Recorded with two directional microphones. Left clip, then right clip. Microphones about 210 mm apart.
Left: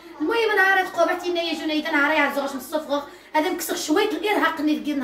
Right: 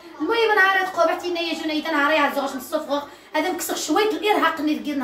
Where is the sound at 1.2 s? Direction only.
Centre (ahead or behind).